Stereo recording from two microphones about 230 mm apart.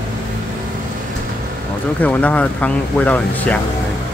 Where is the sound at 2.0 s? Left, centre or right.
Centre.